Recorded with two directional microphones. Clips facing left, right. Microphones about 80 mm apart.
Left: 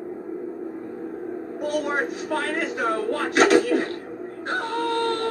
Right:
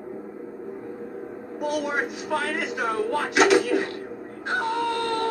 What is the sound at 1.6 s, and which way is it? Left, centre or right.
Speech, left.